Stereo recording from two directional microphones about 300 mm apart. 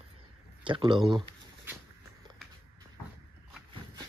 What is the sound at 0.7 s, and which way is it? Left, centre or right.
Speech, centre.